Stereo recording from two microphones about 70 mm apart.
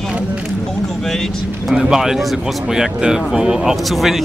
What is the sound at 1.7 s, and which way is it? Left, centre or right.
Speech, centre.